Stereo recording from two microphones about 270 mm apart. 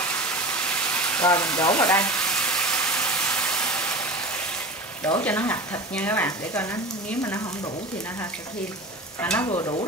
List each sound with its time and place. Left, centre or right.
0.0 s frying: centre
5.2 s speech: centre
9.2 s speech: centre
9.5 s speech: centre